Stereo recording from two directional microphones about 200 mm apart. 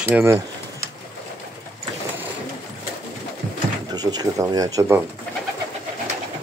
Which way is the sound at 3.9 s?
20° right (ahead or behind).